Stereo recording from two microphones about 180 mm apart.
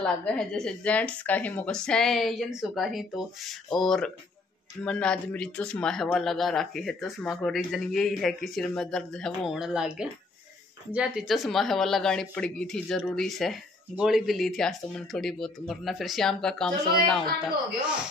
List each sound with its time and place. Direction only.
0.0 s speech: 5° left (ahead or behind)